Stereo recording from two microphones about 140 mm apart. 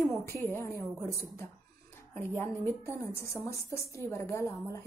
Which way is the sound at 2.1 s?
15° left (ahead or behind).